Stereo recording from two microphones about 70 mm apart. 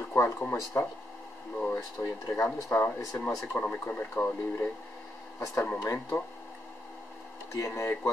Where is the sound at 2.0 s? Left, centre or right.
Left.